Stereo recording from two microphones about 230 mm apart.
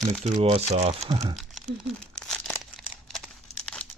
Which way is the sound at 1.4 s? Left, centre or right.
Centre.